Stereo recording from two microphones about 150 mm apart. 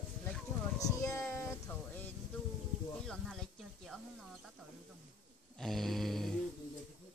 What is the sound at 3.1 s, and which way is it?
Music, centre (ahead or behind).